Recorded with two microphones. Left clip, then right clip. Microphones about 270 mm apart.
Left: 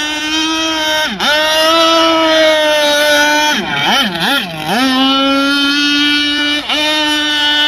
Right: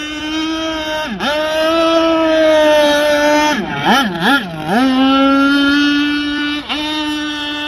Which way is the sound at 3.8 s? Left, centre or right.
Centre.